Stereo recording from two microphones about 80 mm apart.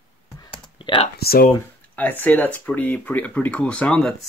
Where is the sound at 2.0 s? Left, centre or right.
Left.